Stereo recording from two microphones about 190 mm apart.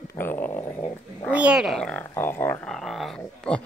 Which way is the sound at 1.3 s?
5° right (ahead or behind).